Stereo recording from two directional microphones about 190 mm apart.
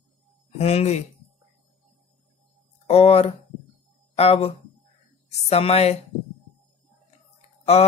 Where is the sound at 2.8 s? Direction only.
35° left (ahead or behind).